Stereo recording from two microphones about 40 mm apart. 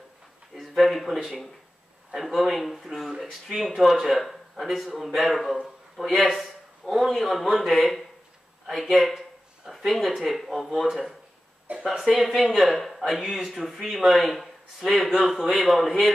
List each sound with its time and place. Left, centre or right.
0.6 s speech: centre
6.2 s a man's voice: centre
7.2 s speech: centre
12.0 s speech: centre